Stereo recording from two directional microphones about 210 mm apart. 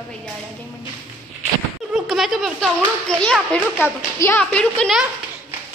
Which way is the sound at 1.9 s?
Centre (ahead or behind).